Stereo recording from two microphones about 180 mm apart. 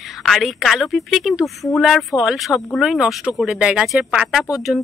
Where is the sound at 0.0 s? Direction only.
Centre (ahead or behind).